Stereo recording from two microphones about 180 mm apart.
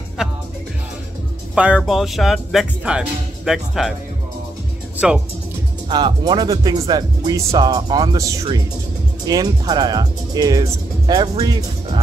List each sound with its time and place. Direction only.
0.2 s music: 5° right (ahead or behind)
1.5 s speech: 5° right (ahead or behind)
4.9 s speech: 5° right (ahead or behind)
5.9 s speech: 25° right (ahead or behind)